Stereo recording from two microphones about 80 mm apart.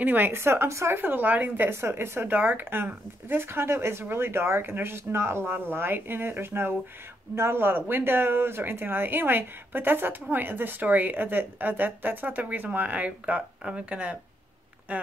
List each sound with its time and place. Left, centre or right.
0.0 s speech: right
0.3 s speech: right
1.7 s speech: right; by 14.1 s centre